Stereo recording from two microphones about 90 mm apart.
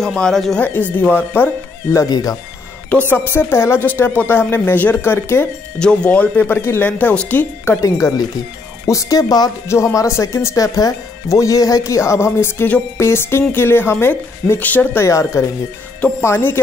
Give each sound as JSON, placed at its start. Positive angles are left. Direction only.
{"t": 0.0, "sound": "speech", "side_deg": 5}
{"t": 0.9, "sound": "speech", "side_deg": 20}
{"t": 2.0, "sound": "speech", "side_deg": 45}
{"t": 3.1, "sound": "speech", "side_deg": 25}
{"t": 5.8, "sound": "speech", "side_deg": 10}
{"t": 7.8, "sound": "speech", "side_deg": 40}
{"t": 15.0, "sound": "speech", "side_deg": 35}